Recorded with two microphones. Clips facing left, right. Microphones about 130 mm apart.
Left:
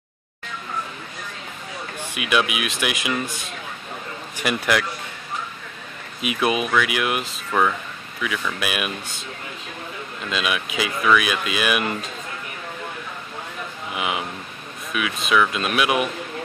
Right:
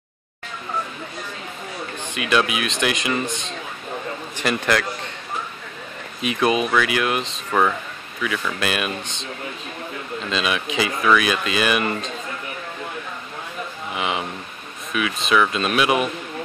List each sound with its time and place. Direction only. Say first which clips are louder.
2.1 s speech: right 2 dB; 10° left (ahead or behind)
3.3 s speech: right 4 dB; 25° right (ahead or behind)
4.4 s speech: right 1 dB; 10° left (ahead or behind)
6.2 s speech: right 2 dB; 5° left (ahead or behind)
7.5 s speech: right 1 dB; 5° right (ahead or behind)
10.3 s speech: right 2 dB; 5° left (ahead or behind)
13.9 s speech: right 1 dB; 5° left (ahead or behind)